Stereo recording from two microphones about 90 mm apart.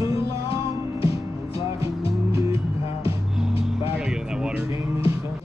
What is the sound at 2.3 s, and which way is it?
Music, 40° right (ahead or behind).